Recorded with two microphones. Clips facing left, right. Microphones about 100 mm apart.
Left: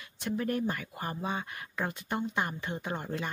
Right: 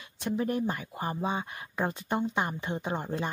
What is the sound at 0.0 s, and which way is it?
Speech, 20° right (ahead or behind).